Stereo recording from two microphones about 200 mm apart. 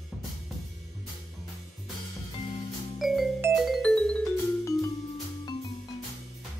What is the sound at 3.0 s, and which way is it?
Music, centre (ahead or behind).